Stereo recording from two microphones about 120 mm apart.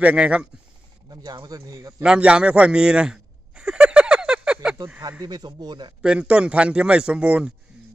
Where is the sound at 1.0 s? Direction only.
35° right (ahead or behind).